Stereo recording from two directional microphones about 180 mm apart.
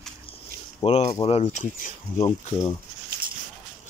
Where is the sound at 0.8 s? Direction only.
35° left (ahead or behind).